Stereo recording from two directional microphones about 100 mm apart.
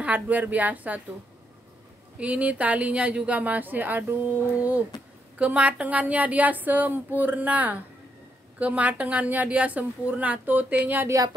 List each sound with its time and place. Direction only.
0.0 s a woman's voice: 15° right (ahead or behind)
2.1 s a woman's voice: 15° right (ahead or behind)
11.1 s speech: 35° right (ahead or behind)